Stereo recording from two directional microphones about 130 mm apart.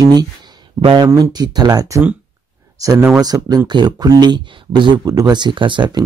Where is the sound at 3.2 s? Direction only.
30° right (ahead or behind).